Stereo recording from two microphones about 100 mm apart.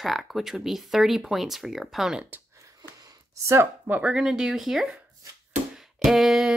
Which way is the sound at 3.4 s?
25° right (ahead or behind).